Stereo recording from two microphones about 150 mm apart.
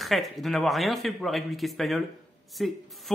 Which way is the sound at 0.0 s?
Centre (ahead or behind).